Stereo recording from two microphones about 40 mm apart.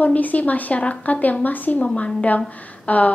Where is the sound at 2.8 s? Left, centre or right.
Left.